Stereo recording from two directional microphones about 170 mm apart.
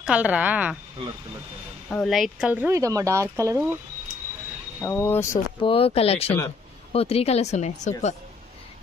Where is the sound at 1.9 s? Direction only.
Centre (ahead or behind); by 3.6 s 20° right (ahead or behind).